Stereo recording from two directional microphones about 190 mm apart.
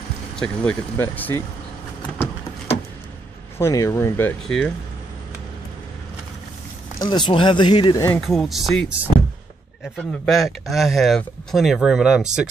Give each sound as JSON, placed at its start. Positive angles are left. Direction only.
{"t": 0.4, "sound": "speech", "side_deg": 5}
{"t": 3.5, "sound": "speech", "side_deg": 15}
{"t": 7.0, "sound": "speech", "side_deg": 25}
{"t": 8.2, "sound": "speech", "side_deg": 0}
{"t": 9.9, "sound": "speech", "side_deg": 0}